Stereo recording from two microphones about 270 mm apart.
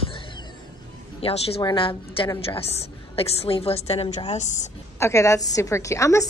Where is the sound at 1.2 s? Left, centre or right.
Left.